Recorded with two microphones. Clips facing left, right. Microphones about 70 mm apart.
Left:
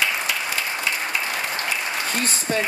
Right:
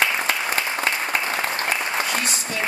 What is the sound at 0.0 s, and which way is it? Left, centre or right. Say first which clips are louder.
Applause: right 2 dB; right.